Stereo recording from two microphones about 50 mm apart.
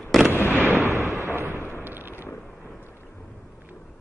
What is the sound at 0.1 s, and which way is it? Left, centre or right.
Fireworks, centre.